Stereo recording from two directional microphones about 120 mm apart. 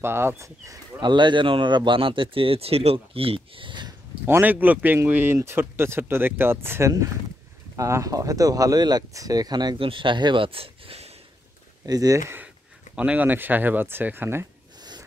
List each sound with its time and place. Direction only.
0.0 s speech: 20° right (ahead or behind)
1.0 s speech: 40° right (ahead or behind)
4.3 s speech: 15° right (ahead or behind); by 11.1 s 50° right (ahead or behind)
11.8 s speech: 30° right (ahead or behind)
12.9 s speech: 10° right (ahead or behind)